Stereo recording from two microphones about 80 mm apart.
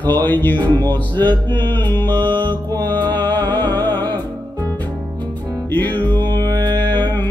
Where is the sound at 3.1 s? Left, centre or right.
Left.